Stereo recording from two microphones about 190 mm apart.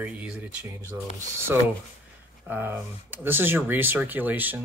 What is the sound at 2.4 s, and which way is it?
Speech, 10° right (ahead or behind).